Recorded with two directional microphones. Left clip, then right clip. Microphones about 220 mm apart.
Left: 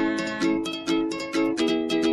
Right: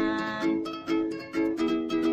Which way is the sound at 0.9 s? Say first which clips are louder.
Left 3 dB; 35° left (ahead or behind).